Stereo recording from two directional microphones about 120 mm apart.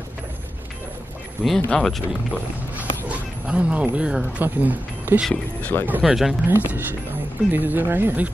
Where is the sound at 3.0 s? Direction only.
10° right (ahead or behind).